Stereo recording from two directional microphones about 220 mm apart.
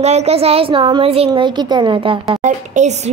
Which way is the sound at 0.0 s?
30° right (ahead or behind).